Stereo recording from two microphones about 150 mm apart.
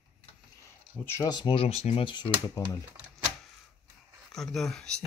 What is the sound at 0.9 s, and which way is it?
Speech, 15° left (ahead or behind).